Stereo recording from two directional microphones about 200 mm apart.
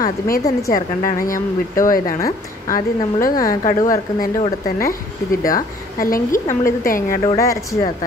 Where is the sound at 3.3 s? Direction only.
15° left (ahead or behind).